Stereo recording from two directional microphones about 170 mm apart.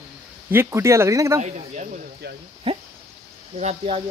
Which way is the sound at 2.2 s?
80° right.